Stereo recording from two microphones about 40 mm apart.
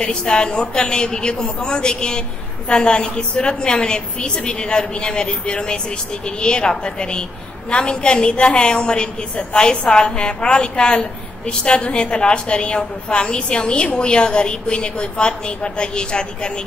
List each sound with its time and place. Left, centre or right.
0.0 s a woman's voice: left